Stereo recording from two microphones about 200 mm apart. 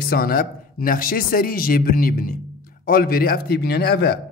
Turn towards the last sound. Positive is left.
turn(degrees=55)  # may be behind; listen again after turning